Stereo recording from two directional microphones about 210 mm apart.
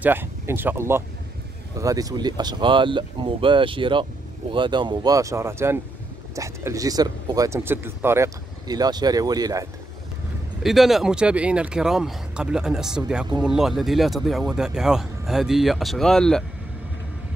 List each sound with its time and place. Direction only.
0.0 s speech: 10° right (ahead or behind)
10.6 s speech: centre (ahead or behind)